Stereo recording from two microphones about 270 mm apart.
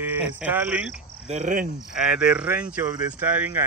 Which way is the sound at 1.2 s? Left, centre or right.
Right.